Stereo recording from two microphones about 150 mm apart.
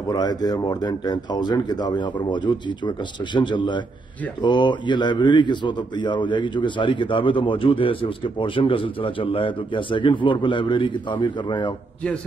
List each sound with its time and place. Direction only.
0.1 s a man's voice: 25° left (ahead or behind)